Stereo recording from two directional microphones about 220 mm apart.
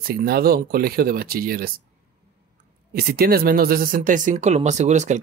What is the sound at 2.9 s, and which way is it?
Speech, 45° right (ahead or behind).